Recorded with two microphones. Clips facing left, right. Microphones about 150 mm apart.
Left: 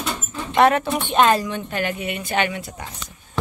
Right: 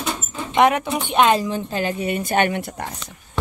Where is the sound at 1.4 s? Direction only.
30° right (ahead or behind); by 2.9 s 60° right (ahead or behind).